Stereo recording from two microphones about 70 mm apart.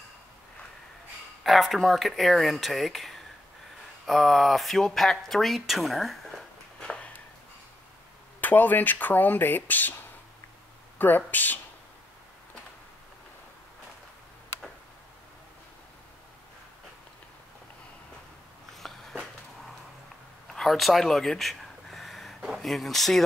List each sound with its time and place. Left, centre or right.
1.4 s speech: centre
8.4 s speech: left
11.0 s speech: left
18.8 s a sound: centre
20.4 s a sound: centre
22.6 s speech: centre